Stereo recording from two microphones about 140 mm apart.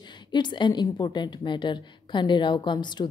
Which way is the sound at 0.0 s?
35° left (ahead or behind).